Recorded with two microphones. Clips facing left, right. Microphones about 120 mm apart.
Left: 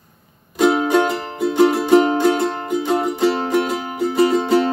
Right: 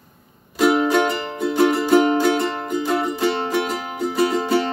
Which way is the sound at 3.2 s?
5° left (ahead or behind).